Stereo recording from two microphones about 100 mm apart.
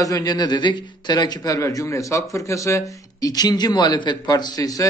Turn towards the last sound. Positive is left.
turn(degrees=35)  # may be behind; listen again after turning